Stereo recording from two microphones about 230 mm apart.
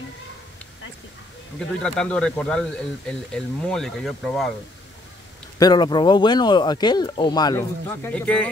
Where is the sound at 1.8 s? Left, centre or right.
Centre.